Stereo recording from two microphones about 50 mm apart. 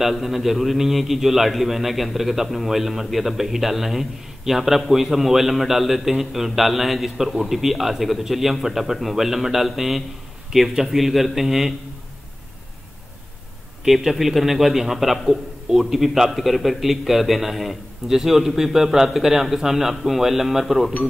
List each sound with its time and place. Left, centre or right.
0.0 s a man's voice: centre
13.8 s a man's voice: centre